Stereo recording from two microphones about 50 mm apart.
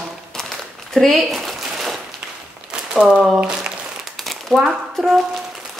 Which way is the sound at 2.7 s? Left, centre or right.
Centre.